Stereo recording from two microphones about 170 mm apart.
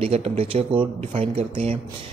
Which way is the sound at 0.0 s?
35° right (ahead or behind).